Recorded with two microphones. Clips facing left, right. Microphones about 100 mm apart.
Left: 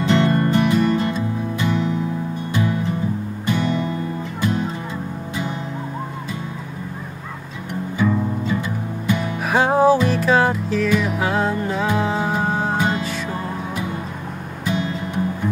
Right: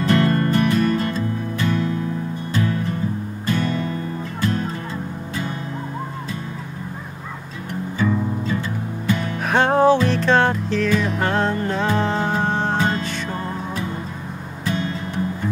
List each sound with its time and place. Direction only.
0.0 s music: 15° left (ahead or behind)
8.0 s music: 10° left (ahead or behind)